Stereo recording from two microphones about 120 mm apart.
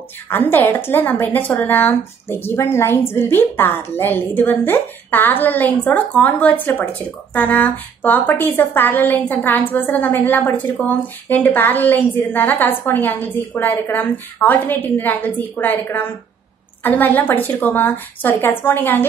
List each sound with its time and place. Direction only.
0.3 s a woman's voice: 15° left (ahead or behind)